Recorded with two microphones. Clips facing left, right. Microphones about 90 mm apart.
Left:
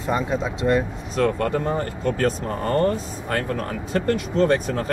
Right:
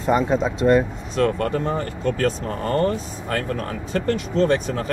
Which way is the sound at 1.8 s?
40° left (ahead or behind).